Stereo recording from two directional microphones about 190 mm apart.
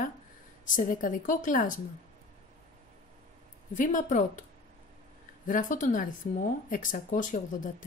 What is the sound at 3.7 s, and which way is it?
Speech, 40° left (ahead or behind).